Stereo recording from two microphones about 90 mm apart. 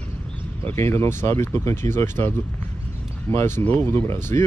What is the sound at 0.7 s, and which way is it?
Speech, 30° left (ahead or behind).